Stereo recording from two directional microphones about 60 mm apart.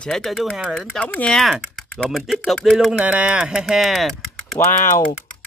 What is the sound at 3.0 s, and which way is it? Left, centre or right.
Speech, right.